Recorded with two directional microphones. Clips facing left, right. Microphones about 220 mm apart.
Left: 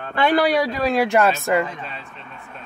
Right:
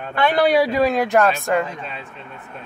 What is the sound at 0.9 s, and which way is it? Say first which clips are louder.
Speech: even; 5° left (ahead or behind).